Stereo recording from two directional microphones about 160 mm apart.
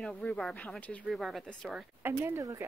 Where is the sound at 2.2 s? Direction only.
20° right (ahead or behind).